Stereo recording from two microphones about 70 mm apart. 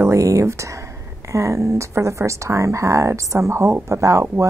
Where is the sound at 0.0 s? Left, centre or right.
Right.